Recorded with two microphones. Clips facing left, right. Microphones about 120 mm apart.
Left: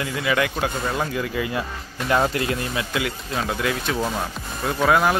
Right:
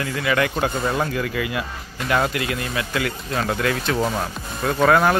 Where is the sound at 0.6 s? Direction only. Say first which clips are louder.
Right 2 dB; 5° right (ahead or behind).